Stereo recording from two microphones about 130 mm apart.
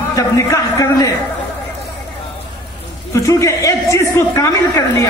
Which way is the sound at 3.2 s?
25° left (ahead or behind).